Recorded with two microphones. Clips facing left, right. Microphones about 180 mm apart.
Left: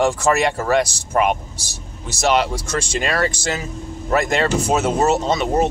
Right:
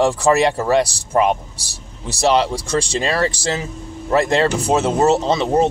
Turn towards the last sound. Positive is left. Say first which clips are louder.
# right 2 dB
turn(degrees=-30)  # may be behind; listen again after turning